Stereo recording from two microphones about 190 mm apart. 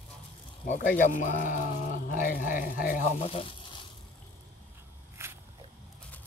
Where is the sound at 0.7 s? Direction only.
45° left (ahead or behind).